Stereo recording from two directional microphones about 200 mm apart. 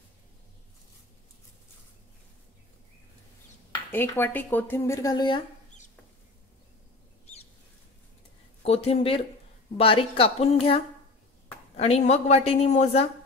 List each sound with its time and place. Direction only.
3.9 s speech: 10° left (ahead or behind)
8.6 s a woman's voice: 30° left (ahead or behind)